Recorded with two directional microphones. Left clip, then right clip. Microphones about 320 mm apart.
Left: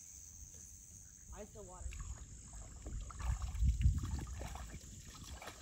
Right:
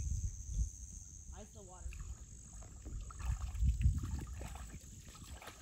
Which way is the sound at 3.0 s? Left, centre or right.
Centre.